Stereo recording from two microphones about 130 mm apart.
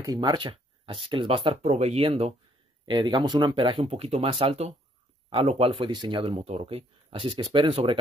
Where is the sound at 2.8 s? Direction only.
35° right (ahead or behind).